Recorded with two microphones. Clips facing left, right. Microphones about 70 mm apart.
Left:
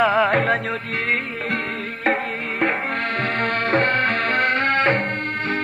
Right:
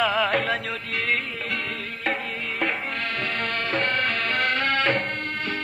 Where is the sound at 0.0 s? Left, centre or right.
Left.